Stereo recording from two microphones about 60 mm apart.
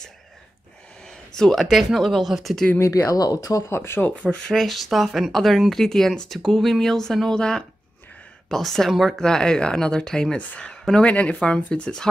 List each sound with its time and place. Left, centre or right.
1.0 s speech: centre
2.8 s speech: left
3.6 s speech: left
4.5 s speech: centre